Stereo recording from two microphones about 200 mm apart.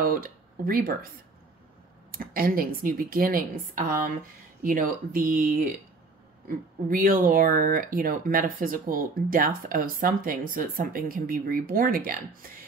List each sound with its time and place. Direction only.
0.0 s speech: 45° right (ahead or behind)
2.0 s speech: 45° right (ahead or behind)
6.9 s speech: 45° right (ahead or behind)